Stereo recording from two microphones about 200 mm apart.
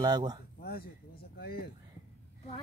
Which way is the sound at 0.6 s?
50° left (ahead or behind).